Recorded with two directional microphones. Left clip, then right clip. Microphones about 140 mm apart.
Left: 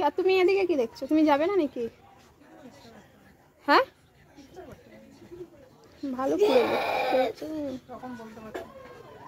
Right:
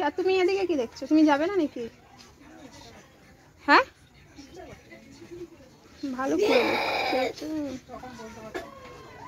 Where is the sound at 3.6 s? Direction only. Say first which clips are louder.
Right 2 dB; 15° left (ahead or behind).